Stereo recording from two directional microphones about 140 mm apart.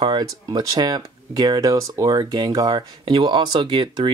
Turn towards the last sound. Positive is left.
turn(degrees=-35)  # may be behind; listen again after turning